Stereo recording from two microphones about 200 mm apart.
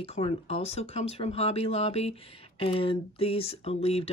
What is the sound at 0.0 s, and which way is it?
Speech, 30° left (ahead or behind).